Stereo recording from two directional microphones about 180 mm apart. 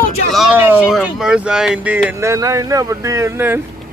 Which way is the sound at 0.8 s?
5° right (ahead or behind).